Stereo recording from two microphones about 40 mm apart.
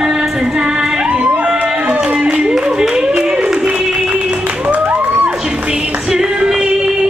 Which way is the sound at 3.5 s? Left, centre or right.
Right.